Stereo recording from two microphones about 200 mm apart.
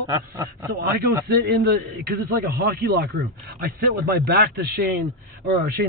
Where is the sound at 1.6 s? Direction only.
55° right (ahead or behind).